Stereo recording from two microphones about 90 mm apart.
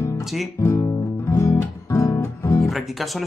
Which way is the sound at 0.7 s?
35° left (ahead or behind).